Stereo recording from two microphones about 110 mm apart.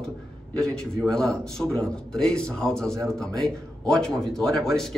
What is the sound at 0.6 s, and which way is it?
A man's voice, 5° left (ahead or behind).